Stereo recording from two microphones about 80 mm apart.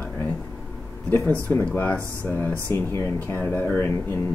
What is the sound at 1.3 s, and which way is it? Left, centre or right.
Speech, left.